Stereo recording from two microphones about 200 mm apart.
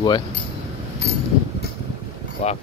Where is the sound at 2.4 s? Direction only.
35° left (ahead or behind).